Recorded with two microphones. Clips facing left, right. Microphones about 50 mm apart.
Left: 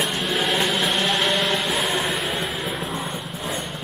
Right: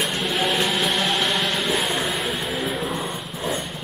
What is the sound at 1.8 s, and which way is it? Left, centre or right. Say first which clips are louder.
Vehicle: left 1 dB; centre.